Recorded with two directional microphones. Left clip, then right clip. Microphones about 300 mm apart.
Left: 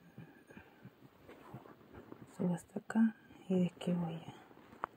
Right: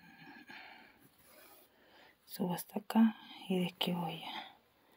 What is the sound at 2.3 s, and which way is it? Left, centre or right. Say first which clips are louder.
Speech: right 2 dB; right.